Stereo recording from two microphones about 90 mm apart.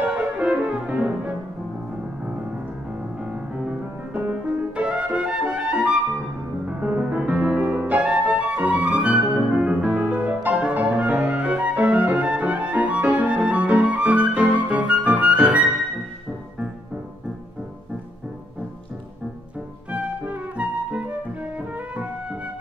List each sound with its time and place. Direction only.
0.0 s music: 15° right (ahead or behind)
3.2 s music: 10° right (ahead or behind)
19.9 s music: 15° right (ahead or behind)